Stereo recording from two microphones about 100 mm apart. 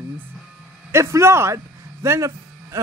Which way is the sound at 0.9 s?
25° right (ahead or behind).